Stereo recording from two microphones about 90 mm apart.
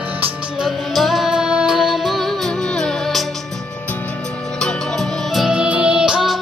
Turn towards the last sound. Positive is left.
turn(degrees=-5)  # may be behind; listen again after turning